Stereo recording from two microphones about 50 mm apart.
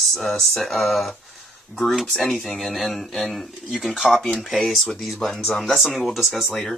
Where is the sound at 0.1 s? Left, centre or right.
Centre.